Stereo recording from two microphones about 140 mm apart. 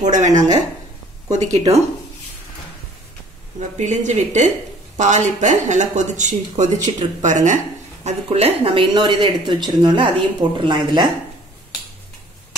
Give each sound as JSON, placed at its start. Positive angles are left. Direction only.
{"t": 0.1, "sound": "speech", "side_deg": -60}
{"t": 3.7, "sound": "speech", "side_deg": -55}
{"t": 8.0, "sound": "speech", "side_deg": -50}
{"t": 8.6, "sound": "speech", "side_deg": -35}